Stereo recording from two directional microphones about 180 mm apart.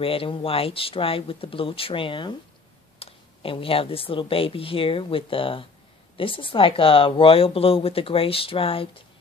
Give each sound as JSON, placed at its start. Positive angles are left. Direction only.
{"t": 0.0, "sound": "speech", "side_deg": 30}